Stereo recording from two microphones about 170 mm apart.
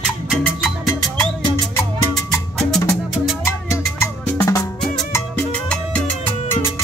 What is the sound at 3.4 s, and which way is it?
Music, 15° left (ahead or behind).